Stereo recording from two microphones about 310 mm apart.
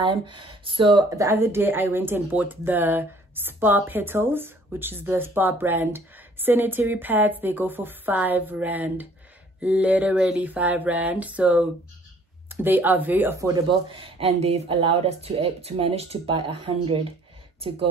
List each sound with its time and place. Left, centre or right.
0.0 s speech: centre
9.6 s a sound: centre
12.4 s speech: centre